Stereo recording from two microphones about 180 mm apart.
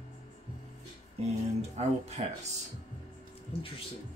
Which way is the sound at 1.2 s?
35° right (ahead or behind).